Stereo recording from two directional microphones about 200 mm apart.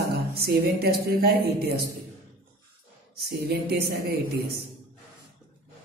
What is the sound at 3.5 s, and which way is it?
A woman's voice, 50° right (ahead or behind).